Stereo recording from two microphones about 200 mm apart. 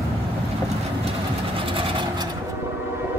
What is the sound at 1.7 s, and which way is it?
Vehicle, 25° right (ahead or behind).